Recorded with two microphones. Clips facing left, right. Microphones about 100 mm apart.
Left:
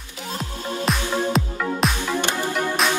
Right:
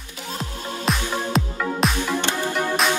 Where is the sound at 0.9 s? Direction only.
Centre (ahead or behind).